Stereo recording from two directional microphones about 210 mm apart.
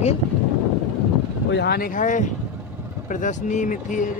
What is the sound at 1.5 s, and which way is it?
Speech, 50° left (ahead or behind).